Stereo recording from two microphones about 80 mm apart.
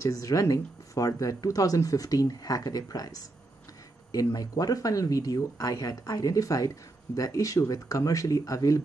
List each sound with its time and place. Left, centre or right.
0.0 s speech: left